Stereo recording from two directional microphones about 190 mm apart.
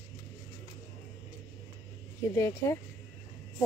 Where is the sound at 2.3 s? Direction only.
15° left (ahead or behind).